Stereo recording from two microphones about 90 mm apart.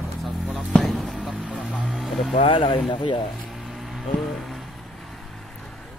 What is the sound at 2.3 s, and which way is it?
Speech, 90° left.